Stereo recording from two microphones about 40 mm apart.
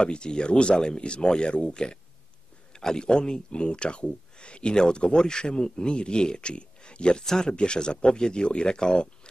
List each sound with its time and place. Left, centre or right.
0.0 s speech: left